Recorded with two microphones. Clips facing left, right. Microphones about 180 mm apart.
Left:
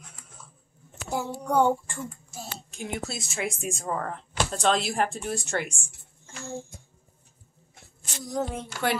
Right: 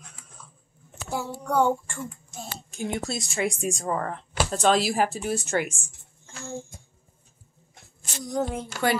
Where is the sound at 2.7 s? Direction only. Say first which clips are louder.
Right 4 dB; centre (ahead or behind).